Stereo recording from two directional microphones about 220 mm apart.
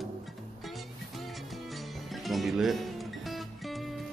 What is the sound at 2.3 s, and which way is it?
Music, centre (ahead or behind).